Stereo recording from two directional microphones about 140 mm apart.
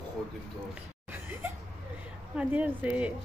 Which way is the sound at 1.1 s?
15° right (ahead or behind).